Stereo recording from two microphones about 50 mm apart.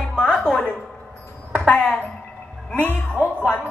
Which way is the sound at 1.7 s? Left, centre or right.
Left.